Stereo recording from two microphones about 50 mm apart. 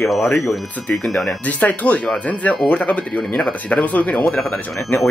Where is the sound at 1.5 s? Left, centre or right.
Left.